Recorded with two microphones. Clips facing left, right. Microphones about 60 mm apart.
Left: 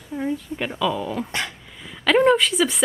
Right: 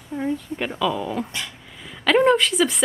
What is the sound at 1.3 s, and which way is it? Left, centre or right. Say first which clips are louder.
Dog: left 4 dB; left.